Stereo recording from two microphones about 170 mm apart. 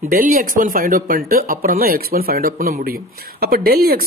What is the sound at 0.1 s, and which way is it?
Speech, 55° right (ahead or behind).